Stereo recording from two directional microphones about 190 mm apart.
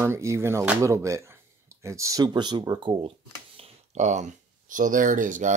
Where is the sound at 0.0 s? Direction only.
15° right (ahead or behind).